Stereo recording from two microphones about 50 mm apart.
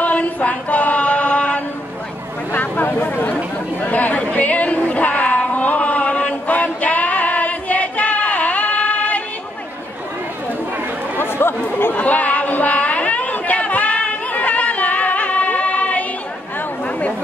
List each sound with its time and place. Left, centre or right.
0.0 s chant: left
2.5 s a sound: left
3.8 s chatter: left
11.1 s chatter: left
12.0 s chatter: left